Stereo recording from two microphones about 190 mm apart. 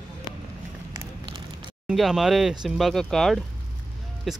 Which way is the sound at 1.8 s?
Centre (ahead or behind).